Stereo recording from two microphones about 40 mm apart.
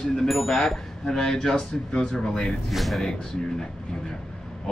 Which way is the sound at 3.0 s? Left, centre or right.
Centre.